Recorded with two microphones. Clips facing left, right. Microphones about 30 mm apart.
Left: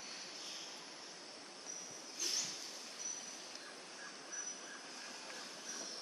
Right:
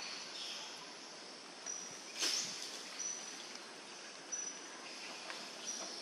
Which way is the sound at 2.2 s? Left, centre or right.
Right.